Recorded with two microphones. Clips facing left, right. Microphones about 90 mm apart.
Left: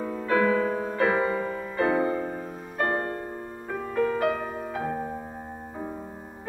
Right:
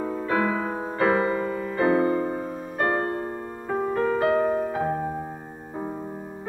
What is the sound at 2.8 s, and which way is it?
Music, 35° right (ahead or behind).